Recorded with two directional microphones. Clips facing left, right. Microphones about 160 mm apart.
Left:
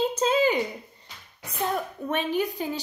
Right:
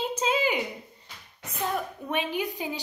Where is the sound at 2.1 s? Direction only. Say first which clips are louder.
Left 3 dB; 10° right (ahead or behind).